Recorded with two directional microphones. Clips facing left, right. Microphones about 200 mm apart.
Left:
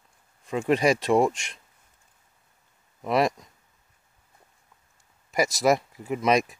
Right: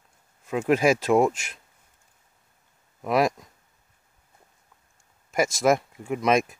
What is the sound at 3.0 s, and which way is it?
Speech, centre (ahead or behind).